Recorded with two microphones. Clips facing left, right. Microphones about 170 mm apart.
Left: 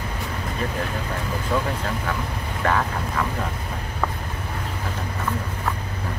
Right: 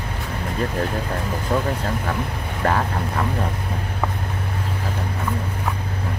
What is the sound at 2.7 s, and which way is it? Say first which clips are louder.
Vehicle: right 2 dB; 35° right (ahead or behind).